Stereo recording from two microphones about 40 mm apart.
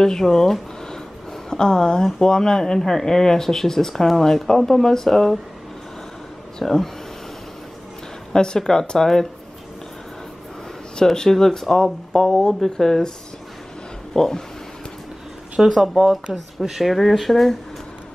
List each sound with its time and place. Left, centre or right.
0.0 s speech: centre
6.6 s speech: centre
8.3 s speech: centre
11.1 s speech: centre
14.1 s speech: centre
15.8 s speech: centre